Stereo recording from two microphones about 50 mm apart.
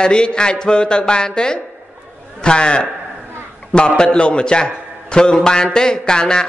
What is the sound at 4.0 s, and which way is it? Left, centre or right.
A man's voice, centre.